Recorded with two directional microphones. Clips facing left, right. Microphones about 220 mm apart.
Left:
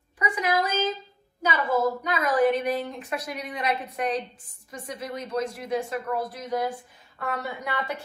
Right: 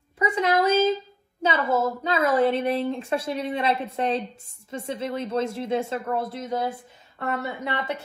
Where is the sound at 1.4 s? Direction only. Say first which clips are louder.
Right 1 dB; 25° right (ahead or behind).